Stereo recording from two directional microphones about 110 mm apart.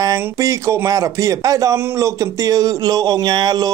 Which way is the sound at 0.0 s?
30° right (ahead or behind).